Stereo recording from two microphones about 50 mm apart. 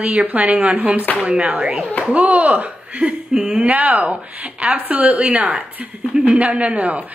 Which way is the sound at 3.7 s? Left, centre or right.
Right.